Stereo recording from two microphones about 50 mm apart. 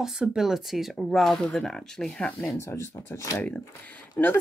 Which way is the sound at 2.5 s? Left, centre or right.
Left.